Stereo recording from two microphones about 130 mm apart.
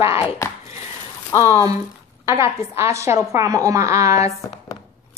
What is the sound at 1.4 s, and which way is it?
A woman's voice, 25° right (ahead or behind).